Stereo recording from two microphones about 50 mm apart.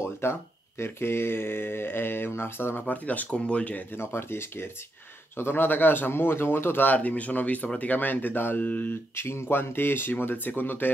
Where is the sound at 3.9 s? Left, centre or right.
Left.